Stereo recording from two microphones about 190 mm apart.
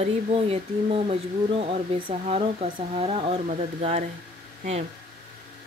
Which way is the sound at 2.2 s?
35° right (ahead or behind).